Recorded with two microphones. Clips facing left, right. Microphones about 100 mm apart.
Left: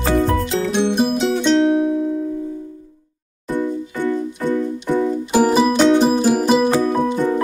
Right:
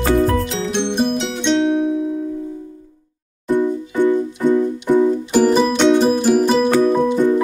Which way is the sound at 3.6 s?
15° right (ahead or behind).